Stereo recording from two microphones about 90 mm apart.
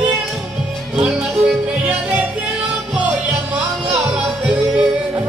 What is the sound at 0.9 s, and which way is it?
Music, 10° right (ahead or behind).